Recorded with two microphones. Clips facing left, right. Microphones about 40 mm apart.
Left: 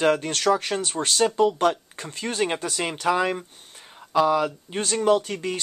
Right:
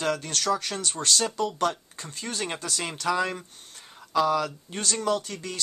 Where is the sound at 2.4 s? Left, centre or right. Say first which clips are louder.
Left 7 dB; left.